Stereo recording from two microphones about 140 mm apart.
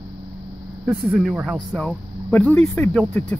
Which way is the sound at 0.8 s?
10° right (ahead or behind).